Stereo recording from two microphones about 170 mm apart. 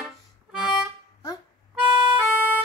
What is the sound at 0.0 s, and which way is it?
Music, 5° right (ahead or behind).